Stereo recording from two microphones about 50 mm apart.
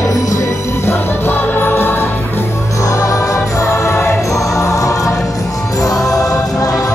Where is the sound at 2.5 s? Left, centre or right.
Left.